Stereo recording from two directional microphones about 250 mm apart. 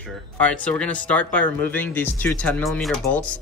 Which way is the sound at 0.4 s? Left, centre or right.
Centre.